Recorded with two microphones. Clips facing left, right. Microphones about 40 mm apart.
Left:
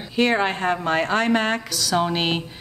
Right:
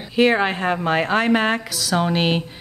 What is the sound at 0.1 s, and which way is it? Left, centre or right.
A woman's voice, centre.